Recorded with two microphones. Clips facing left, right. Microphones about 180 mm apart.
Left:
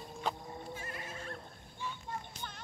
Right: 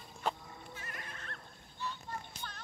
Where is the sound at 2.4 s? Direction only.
15° left (ahead or behind).